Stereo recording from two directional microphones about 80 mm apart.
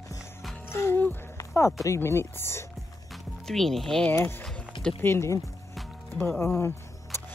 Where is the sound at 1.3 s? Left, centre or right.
Left.